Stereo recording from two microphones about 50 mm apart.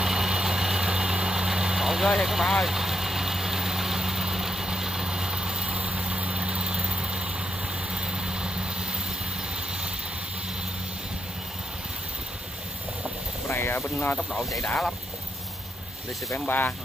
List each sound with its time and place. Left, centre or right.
0.0 s vehicle: centre
2.1 s speech: centre
2.5 s vehicle: centre
13.5 s vehicle: left
16.4 s speech: left